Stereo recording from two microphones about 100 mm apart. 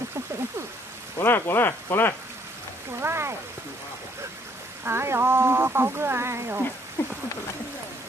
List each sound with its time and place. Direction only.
1.1 s speech: 20° left (ahead or behind)
3.0 s speech: 25° right (ahead or behind)
4.8 s speech: 25° right (ahead or behind)